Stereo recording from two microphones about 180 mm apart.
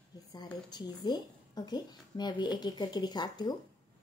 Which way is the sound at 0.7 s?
25° left (ahead or behind).